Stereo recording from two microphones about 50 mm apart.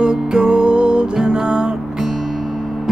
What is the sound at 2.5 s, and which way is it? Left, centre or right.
Music, centre.